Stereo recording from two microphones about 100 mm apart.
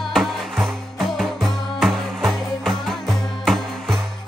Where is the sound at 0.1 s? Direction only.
Centre (ahead or behind).